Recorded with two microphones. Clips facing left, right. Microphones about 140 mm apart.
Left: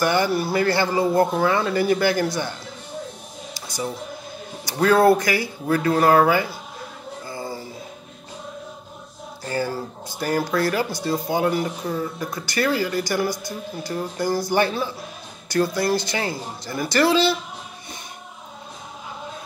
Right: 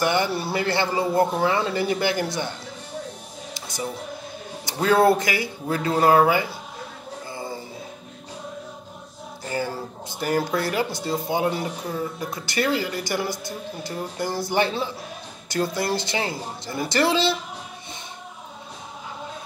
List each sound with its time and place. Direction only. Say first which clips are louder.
0.0 s speech: left 2 dB; 20° right (ahead or behind)
3.5 s music: left 2 dB; 20° right (ahead or behind)
4.6 s speech: left 2 dB; 25° right (ahead or behind)
7.2 s a sound: left 2 dB; 20° right (ahead or behind)
9.5 s speech: left 2 dB; 20° right (ahead or behind)